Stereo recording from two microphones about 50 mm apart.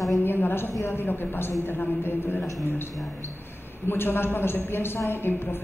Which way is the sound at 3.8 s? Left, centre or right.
Left.